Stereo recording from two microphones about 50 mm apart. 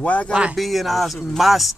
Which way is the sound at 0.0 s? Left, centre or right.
Left.